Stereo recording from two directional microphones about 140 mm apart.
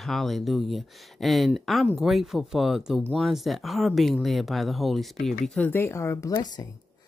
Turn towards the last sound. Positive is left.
turn(degrees=20)  # may be behind; listen again after turning